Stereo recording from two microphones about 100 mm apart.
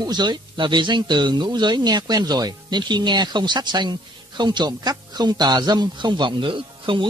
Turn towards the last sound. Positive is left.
turn(degrees=-55)  # may be behind; listen again after turning